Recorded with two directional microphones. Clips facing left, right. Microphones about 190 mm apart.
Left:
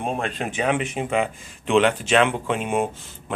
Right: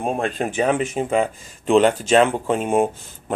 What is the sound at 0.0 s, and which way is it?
Speech, 40° right (ahead or behind).